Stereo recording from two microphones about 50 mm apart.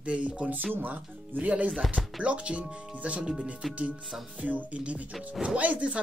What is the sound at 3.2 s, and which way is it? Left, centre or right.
Speech, centre.